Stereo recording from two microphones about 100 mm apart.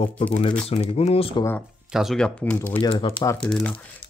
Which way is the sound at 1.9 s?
5° right (ahead or behind).